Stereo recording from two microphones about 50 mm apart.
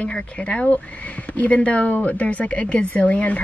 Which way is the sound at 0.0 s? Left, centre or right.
Centre.